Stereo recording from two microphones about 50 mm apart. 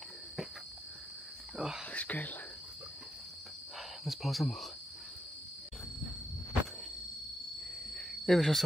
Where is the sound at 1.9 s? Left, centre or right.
Left.